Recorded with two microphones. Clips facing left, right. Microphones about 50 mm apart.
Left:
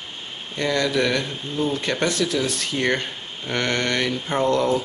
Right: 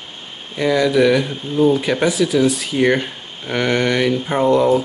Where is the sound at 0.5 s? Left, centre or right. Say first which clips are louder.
Right 7 dB; centre.